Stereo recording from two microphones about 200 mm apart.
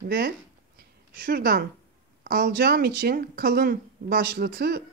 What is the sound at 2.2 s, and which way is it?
Speech, 50° right (ahead or behind).